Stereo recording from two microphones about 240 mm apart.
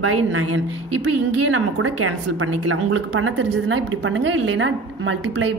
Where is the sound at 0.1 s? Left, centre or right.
Right.